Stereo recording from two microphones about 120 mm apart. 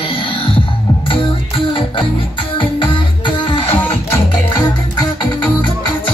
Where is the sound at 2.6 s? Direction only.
45° left (ahead or behind).